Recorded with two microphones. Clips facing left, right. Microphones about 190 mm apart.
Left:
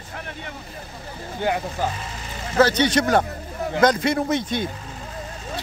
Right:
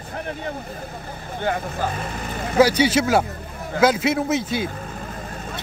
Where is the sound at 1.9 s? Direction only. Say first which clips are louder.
Right 5 dB; 55° right (ahead or behind).